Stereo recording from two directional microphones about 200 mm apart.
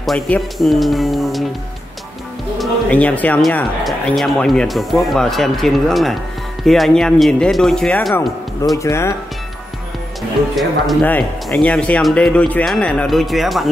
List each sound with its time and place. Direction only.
0.0 s speech: centre (ahead or behind)
2.6 s speech: 5° left (ahead or behind)
8.7 s speech: 15° left (ahead or behind)
10.5 s speech: centre (ahead or behind)